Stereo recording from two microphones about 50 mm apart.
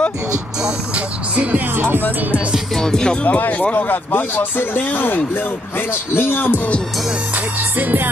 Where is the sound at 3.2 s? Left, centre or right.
Left.